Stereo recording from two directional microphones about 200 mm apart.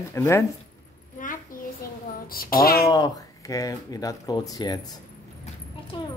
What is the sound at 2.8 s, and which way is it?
Speech, 20° left (ahead or behind).